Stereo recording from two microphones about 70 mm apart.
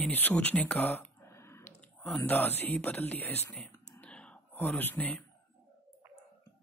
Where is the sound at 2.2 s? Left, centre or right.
Left.